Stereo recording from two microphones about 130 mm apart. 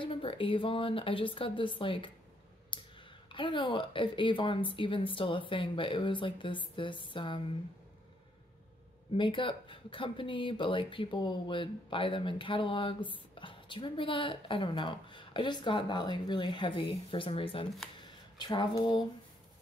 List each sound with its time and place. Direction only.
0.0 s a woman's voice: 45° left (ahead or behind)
2.7 s clicking: 40° left (ahead or behind)
3.3 s speech: 40° left (ahead or behind)
9.1 s speech: 40° left (ahead or behind)